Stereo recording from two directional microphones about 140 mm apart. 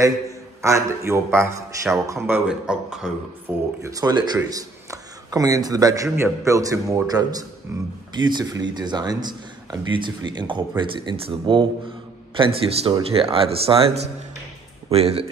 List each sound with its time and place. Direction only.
0.6 s a man's voice: 20° right (ahead or behind)
2.2 s a man's voice: 10° right (ahead or behind)
3.8 s a man's voice: 25° right (ahead or behind); by 15.2 s 45° right (ahead or behind)